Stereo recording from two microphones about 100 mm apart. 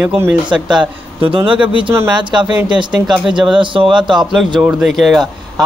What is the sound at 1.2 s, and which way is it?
Speech, 60° right (ahead or behind).